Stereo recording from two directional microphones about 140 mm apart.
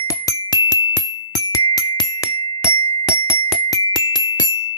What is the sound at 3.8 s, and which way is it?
Glockenspiel, 30° left (ahead or behind).